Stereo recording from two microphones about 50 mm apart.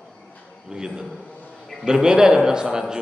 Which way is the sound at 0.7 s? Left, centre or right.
Centre.